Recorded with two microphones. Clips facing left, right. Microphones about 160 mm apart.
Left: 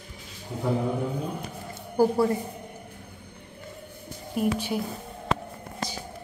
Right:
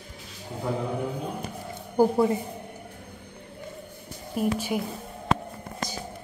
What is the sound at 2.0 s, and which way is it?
Speech, 20° right (ahead or behind).